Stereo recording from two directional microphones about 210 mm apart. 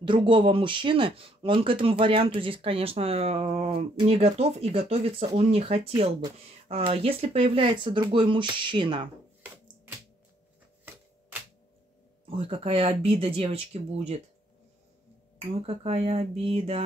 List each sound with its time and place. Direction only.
0.0 s speech: 25° right (ahead or behind)
12.3 s speech: 25° right (ahead or behind)
15.6 s speech: 30° right (ahead or behind)